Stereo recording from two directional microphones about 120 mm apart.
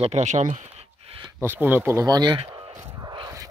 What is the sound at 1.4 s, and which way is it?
Speech, 20° right (ahead or behind).